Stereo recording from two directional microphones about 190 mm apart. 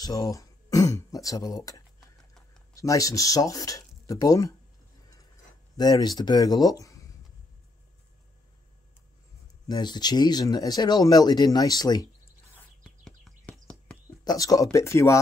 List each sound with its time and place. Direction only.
0.0 s speech: 20° left (ahead or behind)
2.0 s a sound: centre (ahead or behind)
2.7 s speech: 15° left (ahead or behind)
5.8 s speech: 20° left (ahead or behind)
9.7 s speech: 20° left (ahead or behind)
12.5 s a sound: 5° left (ahead or behind)
14.2 s speech: 20° left (ahead or behind)